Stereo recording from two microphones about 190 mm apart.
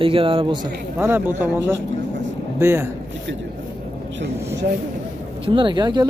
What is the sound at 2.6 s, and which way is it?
Speech, 10° right (ahead or behind).